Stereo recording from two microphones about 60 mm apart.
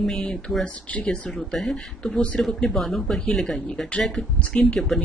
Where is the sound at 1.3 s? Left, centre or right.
Centre.